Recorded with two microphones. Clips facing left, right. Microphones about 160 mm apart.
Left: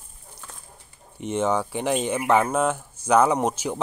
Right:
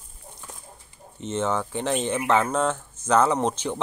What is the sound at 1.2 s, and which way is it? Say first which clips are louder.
Speech: left 2 dB; 15° left (ahead or behind).